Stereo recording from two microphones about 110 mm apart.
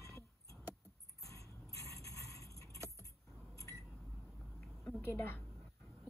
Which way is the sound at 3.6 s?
30° left (ahead or behind).